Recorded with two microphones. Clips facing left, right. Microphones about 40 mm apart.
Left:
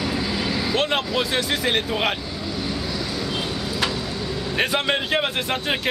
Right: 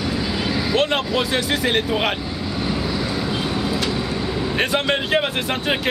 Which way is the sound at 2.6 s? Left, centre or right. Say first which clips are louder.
Right 5 dB; centre.